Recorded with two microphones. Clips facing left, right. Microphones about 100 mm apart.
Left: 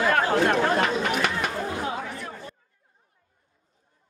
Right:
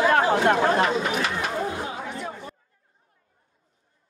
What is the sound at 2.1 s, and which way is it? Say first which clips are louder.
Chatter: right 3 dB; 20° right (ahead or behind).